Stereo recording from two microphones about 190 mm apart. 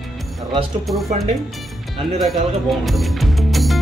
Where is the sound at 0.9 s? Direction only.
Centre (ahead or behind).